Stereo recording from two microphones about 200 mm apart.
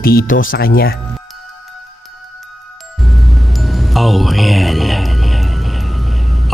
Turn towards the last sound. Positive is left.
turn(degrees=0)  # may be behind; listen again after turning